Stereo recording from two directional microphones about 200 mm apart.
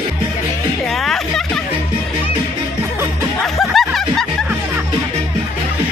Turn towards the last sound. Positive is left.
turn(degrees=0)  # may be behind; listen again after turning